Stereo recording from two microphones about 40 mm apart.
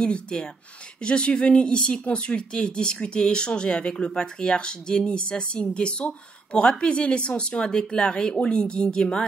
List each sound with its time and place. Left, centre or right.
0.0 s speech: left